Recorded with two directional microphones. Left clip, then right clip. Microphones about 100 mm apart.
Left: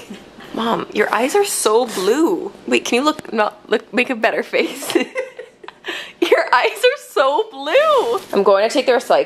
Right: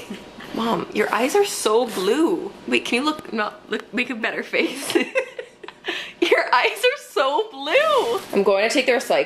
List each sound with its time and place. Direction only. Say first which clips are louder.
0.6 s a woman's voice: left 4 dB; 20° left (ahead or behind); by 4.4 s 35° left (ahead or behind)
4.5 s a woman's voice: left 3 dB; 25° left (ahead or behind)